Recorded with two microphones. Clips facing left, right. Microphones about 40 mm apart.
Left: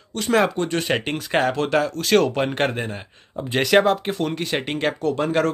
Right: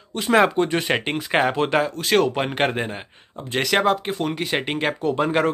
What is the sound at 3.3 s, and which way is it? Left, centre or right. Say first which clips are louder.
Speech: left 4 dB; centre.